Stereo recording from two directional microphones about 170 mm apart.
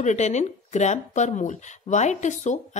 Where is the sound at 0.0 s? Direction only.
45° left (ahead or behind).